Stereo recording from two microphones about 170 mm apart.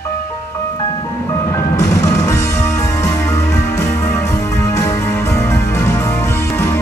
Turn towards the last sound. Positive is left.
turn(degrees=15)  # may be behind; listen again after turning